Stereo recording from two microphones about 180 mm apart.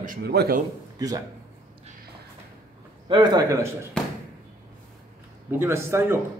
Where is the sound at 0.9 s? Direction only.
20° right (ahead or behind).